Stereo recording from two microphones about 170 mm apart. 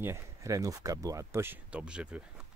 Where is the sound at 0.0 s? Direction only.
15° right (ahead or behind).